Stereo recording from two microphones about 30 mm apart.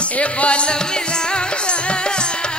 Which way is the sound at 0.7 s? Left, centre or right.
Left.